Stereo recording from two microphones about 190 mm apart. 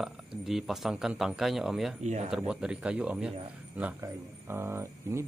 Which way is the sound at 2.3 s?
5° right (ahead or behind).